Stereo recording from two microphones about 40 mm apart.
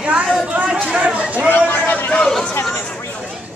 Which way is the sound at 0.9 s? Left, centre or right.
Right.